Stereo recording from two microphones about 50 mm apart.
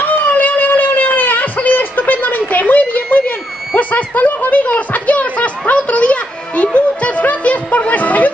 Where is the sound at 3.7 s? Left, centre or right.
Left.